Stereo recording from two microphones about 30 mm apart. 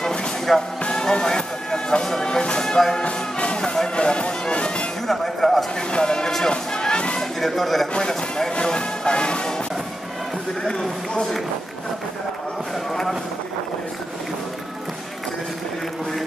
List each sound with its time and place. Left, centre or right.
0.5 s speech: centre
0.8 s vehicle: left
2.0 s music: centre
3.0 s music: left
5.0 s music: centre
5.8 s a sound: left
6.7 s music: left
7.3 s a sound: centre
8.0 s a sound: centre
8.5 s music: left